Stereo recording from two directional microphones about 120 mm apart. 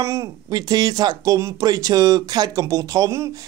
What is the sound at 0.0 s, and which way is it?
A man's voice, 25° right (ahead or behind).